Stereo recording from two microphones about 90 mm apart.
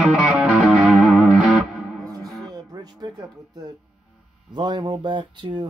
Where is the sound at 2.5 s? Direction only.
50° right (ahead or behind).